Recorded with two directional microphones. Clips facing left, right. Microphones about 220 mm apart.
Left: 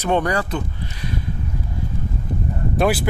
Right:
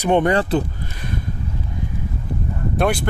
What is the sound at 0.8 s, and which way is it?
Speech, 50° right (ahead or behind).